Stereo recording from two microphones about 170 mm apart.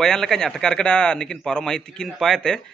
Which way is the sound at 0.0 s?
Centre (ahead or behind).